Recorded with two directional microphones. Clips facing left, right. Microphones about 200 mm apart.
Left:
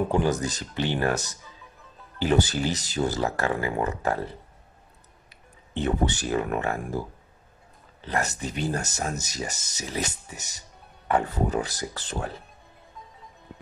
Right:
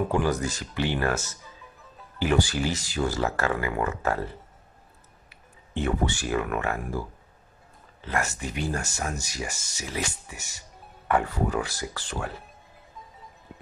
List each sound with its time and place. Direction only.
0.1 s speech: 20° left (ahead or behind)
5.8 s speech: 20° left (ahead or behind)
6.4 s speech: 35° left (ahead or behind)
6.7 s speech: 20° left (ahead or behind)